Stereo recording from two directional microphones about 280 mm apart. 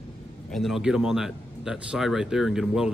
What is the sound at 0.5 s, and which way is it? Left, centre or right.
A man's voice, centre.